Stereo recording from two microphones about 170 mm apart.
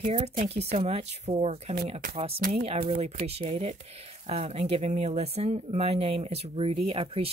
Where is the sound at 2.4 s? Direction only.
60° right (ahead or behind).